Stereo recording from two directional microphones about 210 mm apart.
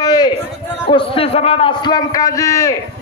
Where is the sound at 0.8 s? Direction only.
25° left (ahead or behind).